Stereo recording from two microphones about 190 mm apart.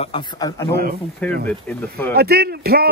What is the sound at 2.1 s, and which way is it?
Speech, 55° right (ahead or behind).